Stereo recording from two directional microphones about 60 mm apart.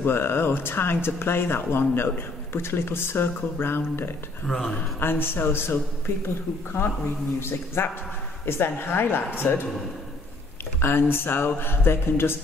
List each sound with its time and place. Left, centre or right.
0.0 s speech: left
4.5 s speech: centre
5.0 s speech: left
10.8 s speech: left